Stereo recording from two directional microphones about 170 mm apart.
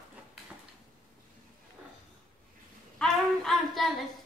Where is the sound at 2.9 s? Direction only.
5° left (ahead or behind).